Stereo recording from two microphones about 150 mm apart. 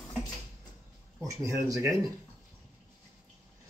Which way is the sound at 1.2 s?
20° right (ahead or behind).